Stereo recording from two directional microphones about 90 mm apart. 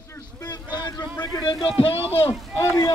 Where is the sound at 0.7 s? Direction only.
50° left (ahead or behind).